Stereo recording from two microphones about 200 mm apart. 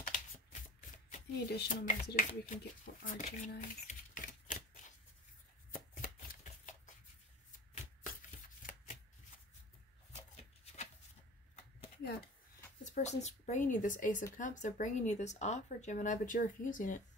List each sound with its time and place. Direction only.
0.0 s shuffling cards: 40° left (ahead or behind)
1.5 s speech: 45° left (ahead or behind)
5.7 s chopping: 40° left (ahead or behind)
7.7 s shuffling cards: 40° left (ahead or behind)
10.1 s a sound: 35° left (ahead or behind)
12.8 s speech: 35° left (ahead or behind)